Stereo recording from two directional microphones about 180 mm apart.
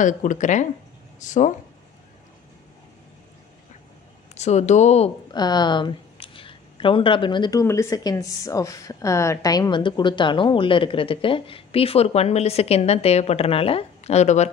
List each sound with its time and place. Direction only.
0.0 s speech: 45° left (ahead or behind)
4.4 s speech: 40° left (ahead or behind)
5.3 s speech: 25° left (ahead or behind); by 14.5 s 40° left (ahead or behind)